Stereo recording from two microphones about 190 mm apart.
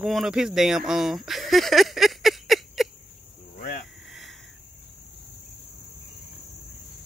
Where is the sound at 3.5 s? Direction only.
40° left (ahead or behind).